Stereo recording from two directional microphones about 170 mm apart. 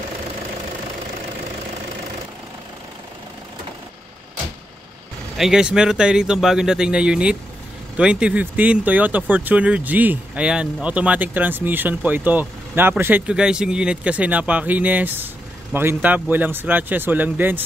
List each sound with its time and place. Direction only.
5.4 s speech: 5° right (ahead or behind)